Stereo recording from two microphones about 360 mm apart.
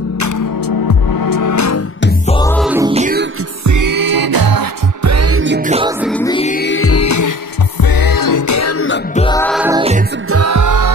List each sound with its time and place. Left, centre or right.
0.2 s music: left
2.2 s music: centre
2.9 s music: right
3.6 s music: right
5.0 s music: right; by 5.9 s centre
5.9 s music: centre
6.2 s music: centre; by 7.3 s left
7.8 s music: left
9.1 s music: centre
10.3 s music: right